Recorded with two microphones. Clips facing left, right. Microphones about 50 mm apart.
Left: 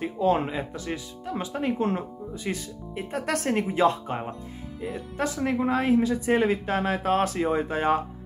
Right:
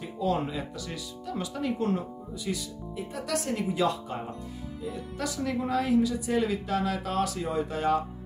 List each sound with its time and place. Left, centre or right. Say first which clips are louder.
0.0 s speech: left 5 dB; left
3.7 s speech: left 5 dB; left
5.2 s speech: left 5 dB; left